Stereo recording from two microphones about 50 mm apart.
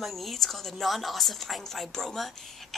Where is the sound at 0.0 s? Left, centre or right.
Centre.